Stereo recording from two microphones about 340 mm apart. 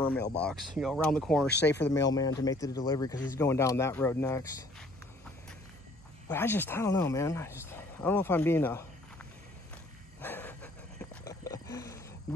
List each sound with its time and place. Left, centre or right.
0.0 s speech: centre
1.5 s speech: left
2.0 s speech: centre
6.2 s speech: centre
10.2 s a sound: centre